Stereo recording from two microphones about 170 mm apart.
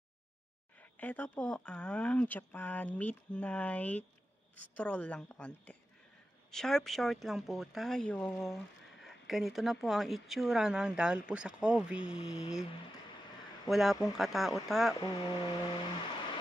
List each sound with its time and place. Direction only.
0.7 s speech: 10° left (ahead or behind)
13.7 s speech: centre (ahead or behind)
15.0 s speech: 25° left (ahead or behind)